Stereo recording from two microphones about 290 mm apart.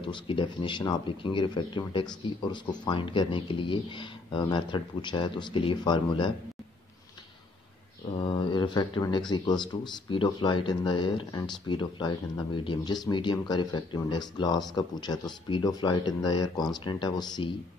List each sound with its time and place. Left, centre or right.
0.0 s speech: centre
8.2 s speech: centre